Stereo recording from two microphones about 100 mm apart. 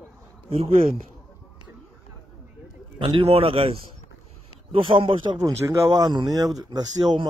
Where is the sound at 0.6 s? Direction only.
75° right (ahead or behind).